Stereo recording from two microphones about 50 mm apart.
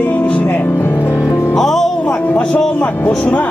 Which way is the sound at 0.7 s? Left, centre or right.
Left.